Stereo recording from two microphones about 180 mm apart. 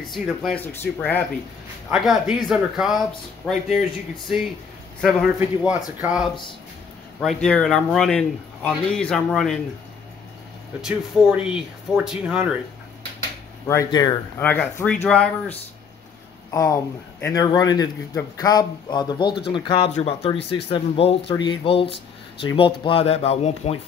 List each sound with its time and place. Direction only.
0.1 s a man's voice: centre (ahead or behind)
1.9 s a man's voice: 5° right (ahead or behind)
5.0 s a man's voice: 5° right (ahead or behind)
10.8 s a man's voice: 5° right (ahead or behind)
13.7 s a man's voice: 20° left (ahead or behind)
16.4 s a man's voice: 20° left (ahead or behind)
22.8 s speech: 35° left (ahead or behind)